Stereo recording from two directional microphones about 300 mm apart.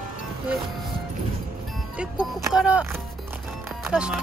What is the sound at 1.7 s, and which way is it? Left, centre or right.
Music, centre.